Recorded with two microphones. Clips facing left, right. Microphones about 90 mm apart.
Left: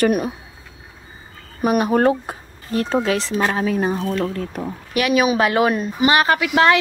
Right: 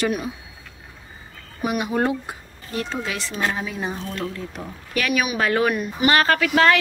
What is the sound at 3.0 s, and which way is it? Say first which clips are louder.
Speech: left 9 dB; 35° left (ahead or behind).